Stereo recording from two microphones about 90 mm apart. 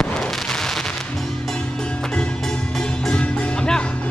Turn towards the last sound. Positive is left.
turn(degrees=10)  # may be behind; listen again after turning